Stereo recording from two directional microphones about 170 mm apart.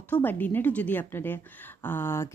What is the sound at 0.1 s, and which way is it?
A woman's voice, 10° left (ahead or behind).